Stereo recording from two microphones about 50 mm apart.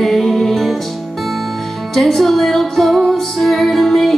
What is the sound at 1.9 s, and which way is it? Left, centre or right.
Music, centre.